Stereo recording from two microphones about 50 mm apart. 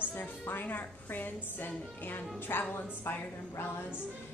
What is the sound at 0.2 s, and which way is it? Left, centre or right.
A woman's voice, left.